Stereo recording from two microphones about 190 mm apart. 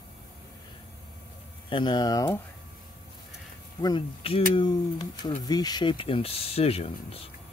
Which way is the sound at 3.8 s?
25° left (ahead or behind).